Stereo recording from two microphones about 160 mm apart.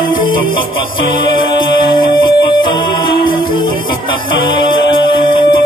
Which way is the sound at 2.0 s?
30° left (ahead or behind).